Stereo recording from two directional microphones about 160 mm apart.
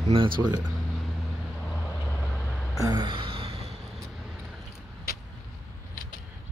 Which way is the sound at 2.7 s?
25° right (ahead or behind).